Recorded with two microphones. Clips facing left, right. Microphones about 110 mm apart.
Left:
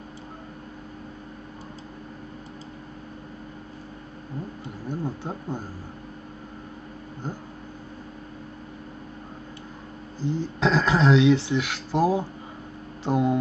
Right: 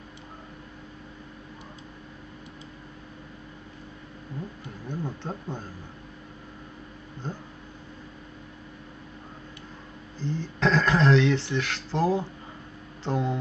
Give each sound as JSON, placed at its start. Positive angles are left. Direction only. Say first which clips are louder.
{"t": 4.8, "sound": "speech", "louder": "left 3 dB", "side_deg": 10}
{"t": 7.2, "sound": "speech", "louder": "left 2 dB", "side_deg": 10}
{"t": 10.2, "sound": "speech", "louder": "left 2 dB", "side_deg": 10}